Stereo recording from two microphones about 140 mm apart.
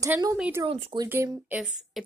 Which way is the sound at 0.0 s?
25° right (ahead or behind).